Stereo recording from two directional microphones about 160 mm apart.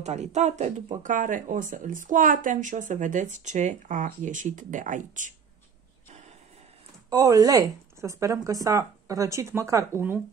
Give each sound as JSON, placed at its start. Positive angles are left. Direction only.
{"t": 0.0, "sound": "speech", "side_deg": -45}
{"t": 7.1, "sound": "speech", "side_deg": -20}